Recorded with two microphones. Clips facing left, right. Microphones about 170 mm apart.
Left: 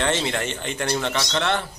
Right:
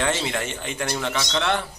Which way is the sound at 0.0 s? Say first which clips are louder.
Left 1 dB; 5° right (ahead or behind).